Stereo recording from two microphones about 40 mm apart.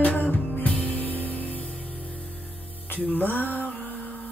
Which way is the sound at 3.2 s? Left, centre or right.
Left.